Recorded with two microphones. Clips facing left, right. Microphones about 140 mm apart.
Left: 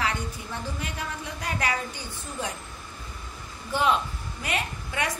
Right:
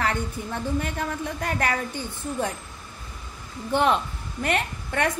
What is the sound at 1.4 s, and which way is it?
A woman's voice, 50° right (ahead or behind).